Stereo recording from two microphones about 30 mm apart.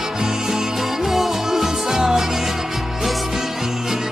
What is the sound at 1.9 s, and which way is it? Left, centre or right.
Music, centre.